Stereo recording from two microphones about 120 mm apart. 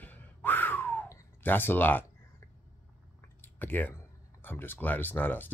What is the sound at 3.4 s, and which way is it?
Speech, 15° left (ahead or behind).